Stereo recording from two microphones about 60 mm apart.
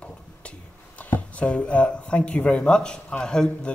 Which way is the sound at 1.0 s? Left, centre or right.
Left.